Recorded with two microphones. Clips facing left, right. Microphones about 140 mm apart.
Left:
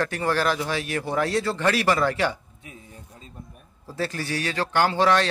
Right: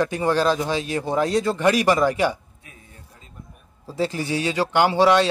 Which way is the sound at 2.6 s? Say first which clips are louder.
Left 8 dB; 25° left (ahead or behind).